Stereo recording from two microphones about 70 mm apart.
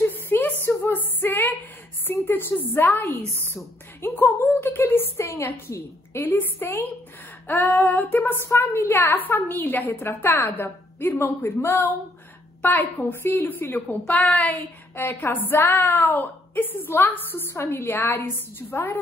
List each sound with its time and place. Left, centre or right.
0.0 s a sound: left
2.0 s a woman's voice: left
6.2 s a woman's voice: left